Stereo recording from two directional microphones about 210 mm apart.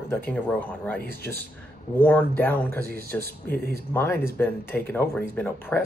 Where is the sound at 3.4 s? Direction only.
45° left (ahead or behind).